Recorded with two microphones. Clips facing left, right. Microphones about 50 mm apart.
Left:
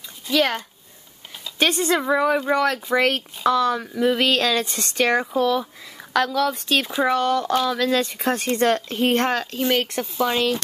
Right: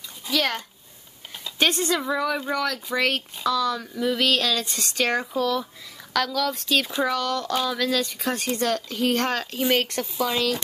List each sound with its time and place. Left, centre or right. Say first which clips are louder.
0.3 s a woman's voice: left 4 dB; left
1.9 s a woman's voice: left 5 dB; left
7.1 s a woman's voice: left 5 dB; left
9.5 s speech: left 1 dB; centre
9.8 s a woman's voice: left 2 dB; centre